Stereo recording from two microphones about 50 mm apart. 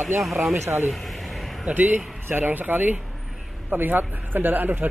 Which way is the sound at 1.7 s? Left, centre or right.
Right.